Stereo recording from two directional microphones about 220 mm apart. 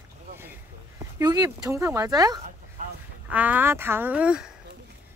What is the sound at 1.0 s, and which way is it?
Speech, 15° right (ahead or behind).